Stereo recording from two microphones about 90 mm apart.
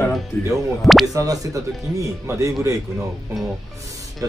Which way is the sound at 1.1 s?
40° right (ahead or behind).